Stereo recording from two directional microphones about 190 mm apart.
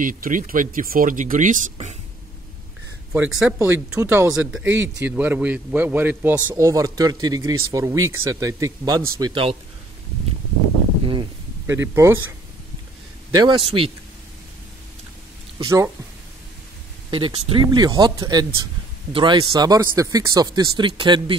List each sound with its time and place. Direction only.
0.0 s speech: 45° right (ahead or behind)
3.1 s a man's voice: 5° right (ahead or behind); by 9.6 s 30° right (ahead or behind)
11.6 s a man's voice: 15° right (ahead or behind)
13.3 s speech: 20° right (ahead or behind)
15.6 s a man's voice: 15° right (ahead or behind)
17.1 s speech: 25° right (ahead or behind)